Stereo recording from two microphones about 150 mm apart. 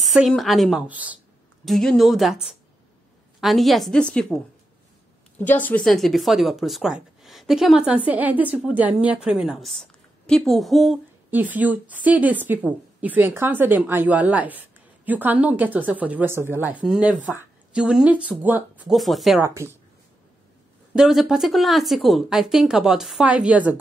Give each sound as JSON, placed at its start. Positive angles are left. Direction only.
{"t": 0.0, "sound": "a woman's voice", "side_deg": 0}
{"t": 1.6, "sound": "speech", "side_deg": 0}
{"t": 5.4, "sound": "speech", "side_deg": 10}
{"t": 11.2, "sound": "a woman's voice", "side_deg": -10}
{"t": 18.9, "sound": "speech", "side_deg": 0}
{"t": 19.4, "sound": "a woman's voice", "side_deg": -15}
{"t": 20.9, "sound": "speech", "side_deg": -5}